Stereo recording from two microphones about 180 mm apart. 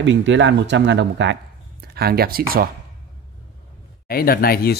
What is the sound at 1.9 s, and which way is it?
Speech, 60° right (ahead or behind).